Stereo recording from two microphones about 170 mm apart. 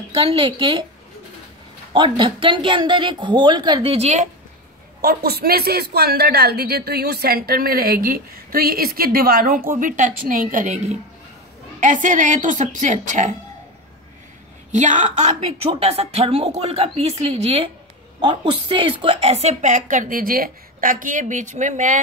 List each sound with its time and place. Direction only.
0.2 s speech: 30° right (ahead or behind)
2.0 s speech: 30° right (ahead or behind)
5.0 s speech: 65° right (ahead or behind); by 13.3 s 45° right (ahead or behind)
14.7 s a woman's voice: 45° right (ahead or behind)